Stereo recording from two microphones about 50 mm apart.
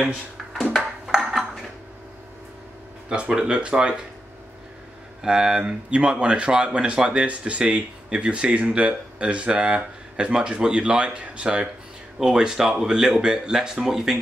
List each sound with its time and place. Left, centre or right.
1.0 s dishes: centre
3.1 s speech: centre
5.2 s speech: centre